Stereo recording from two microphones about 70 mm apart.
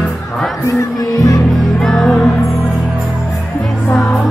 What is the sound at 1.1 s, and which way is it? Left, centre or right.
Music, left.